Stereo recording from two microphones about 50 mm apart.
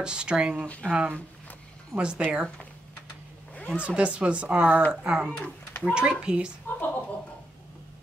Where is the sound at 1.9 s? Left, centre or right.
Right.